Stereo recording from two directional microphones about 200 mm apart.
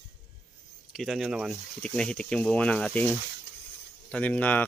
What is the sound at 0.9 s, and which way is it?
Speech, centre (ahead or behind).